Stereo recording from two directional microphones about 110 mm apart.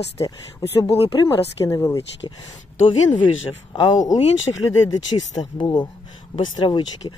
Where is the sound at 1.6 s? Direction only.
30° left (ahead or behind).